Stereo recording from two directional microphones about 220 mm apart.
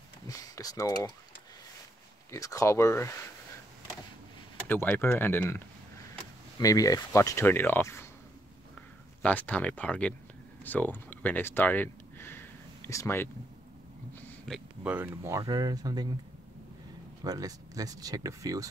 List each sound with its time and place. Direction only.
0.3 s speech: 15° left (ahead or behind)
2.3 s speech: 15° left (ahead or behind)
4.6 s speech: 10° left (ahead or behind)
9.2 s speech: 5° left (ahead or behind)
14.2 s speech: centre (ahead or behind)
17.2 s speech: 15° right (ahead or behind)